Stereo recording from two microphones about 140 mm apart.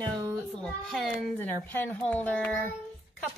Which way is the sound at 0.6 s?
Centre (ahead or behind).